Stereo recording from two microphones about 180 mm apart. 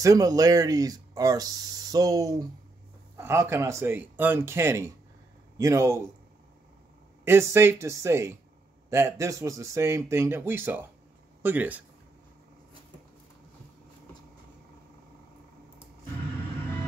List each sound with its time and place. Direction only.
0.0 s speech: 20° right (ahead or behind)
7.2 s speech: 15° right (ahead or behind)